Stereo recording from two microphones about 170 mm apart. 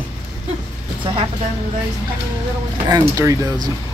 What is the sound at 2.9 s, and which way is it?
Speech, 20° right (ahead or behind).